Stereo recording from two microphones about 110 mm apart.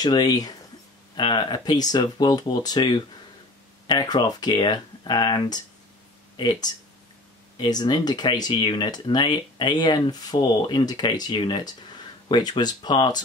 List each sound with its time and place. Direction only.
0.0 s speech: 40° left (ahead or behind)
1.1 s speech: 45° left (ahead or behind)